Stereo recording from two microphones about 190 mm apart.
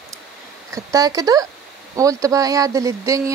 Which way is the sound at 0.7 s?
20° right (ahead or behind).